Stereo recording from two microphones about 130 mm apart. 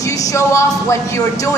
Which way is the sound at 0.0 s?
25° left (ahead or behind).